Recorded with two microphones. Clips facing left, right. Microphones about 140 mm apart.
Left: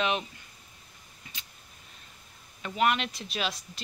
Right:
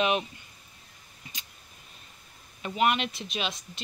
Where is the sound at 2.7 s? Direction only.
10° right (ahead or behind).